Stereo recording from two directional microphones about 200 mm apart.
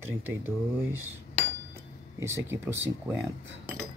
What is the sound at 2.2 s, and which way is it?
Speech, 15° right (ahead or behind).